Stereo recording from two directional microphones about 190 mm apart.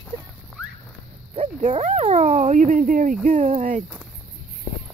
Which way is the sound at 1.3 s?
30° right (ahead or behind).